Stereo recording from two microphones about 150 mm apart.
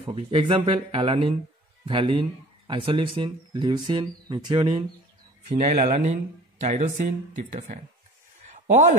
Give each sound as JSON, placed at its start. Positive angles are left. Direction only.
{"t": 0.0, "sound": "speech", "side_deg": -35}
{"t": 5.5, "sound": "speech", "side_deg": -45}
{"t": 8.4, "sound": "a sound", "side_deg": -55}